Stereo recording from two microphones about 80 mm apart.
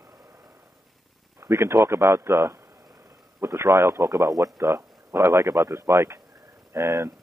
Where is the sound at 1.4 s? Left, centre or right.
Right.